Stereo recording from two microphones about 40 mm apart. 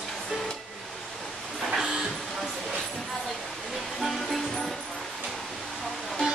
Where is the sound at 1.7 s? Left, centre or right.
Centre.